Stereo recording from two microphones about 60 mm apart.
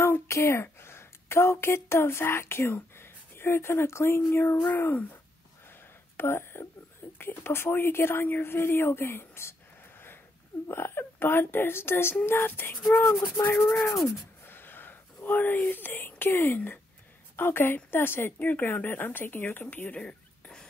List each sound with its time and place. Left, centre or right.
0.3 s a woman's voice: left
6.1 s speech: left
14.4 s a sound: left
15.2 s speech: left
19.6 s speech: left
20.0 s a sound: centre